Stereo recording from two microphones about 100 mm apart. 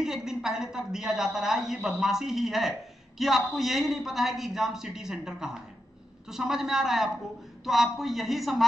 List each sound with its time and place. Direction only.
0.0 s a woman's voice: 5° right (ahead or behind)